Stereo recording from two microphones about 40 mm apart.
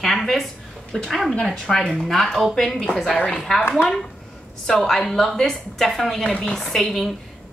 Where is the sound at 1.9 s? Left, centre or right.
Centre.